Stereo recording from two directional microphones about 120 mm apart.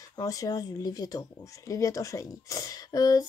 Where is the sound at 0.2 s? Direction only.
30° left (ahead or behind).